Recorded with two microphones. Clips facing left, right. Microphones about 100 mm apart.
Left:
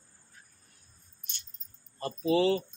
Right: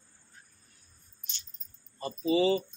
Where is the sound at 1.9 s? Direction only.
70° left (ahead or behind).